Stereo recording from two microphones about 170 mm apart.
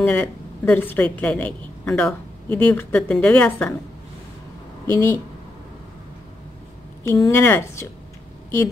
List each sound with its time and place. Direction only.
0.0 s speech: 10° left (ahead or behind)
4.9 s speech: 20° left (ahead or behind)
7.1 s speech: 15° left (ahead or behind)